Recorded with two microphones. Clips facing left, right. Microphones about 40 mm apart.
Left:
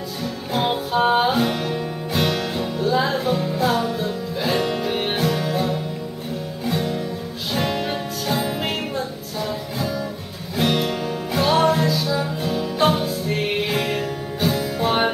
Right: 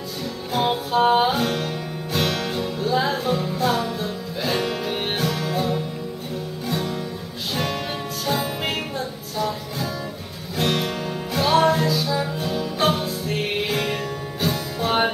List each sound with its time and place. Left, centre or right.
0.2 s music: centre